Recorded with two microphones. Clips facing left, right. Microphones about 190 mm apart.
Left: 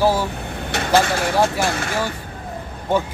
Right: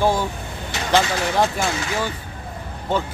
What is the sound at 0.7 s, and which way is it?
Vehicle, 50° left (ahead or behind).